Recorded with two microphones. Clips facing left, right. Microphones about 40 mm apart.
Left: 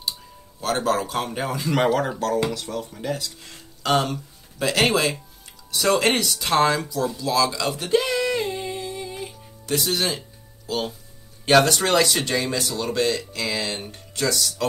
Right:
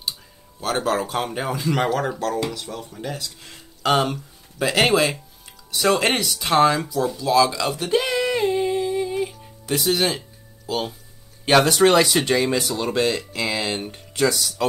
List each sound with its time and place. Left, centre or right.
0.6 s speech: centre